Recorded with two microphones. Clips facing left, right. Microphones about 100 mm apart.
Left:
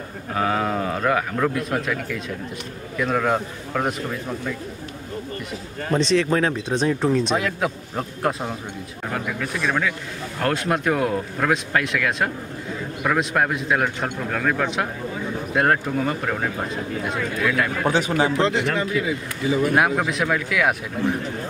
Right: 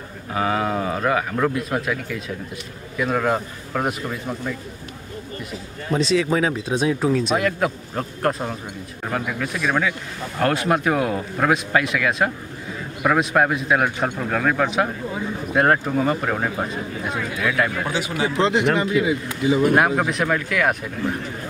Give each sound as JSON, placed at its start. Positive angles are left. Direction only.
{"t": 0.3, "sound": "speech", "side_deg": 0}
{"t": 5.9, "sound": "a man's voice", "side_deg": -5}
{"t": 17.8, "sound": "speech", "side_deg": 40}
{"t": 18.4, "sound": "a man's voice", "side_deg": -20}
{"t": 20.1, "sound": "speech", "side_deg": 0}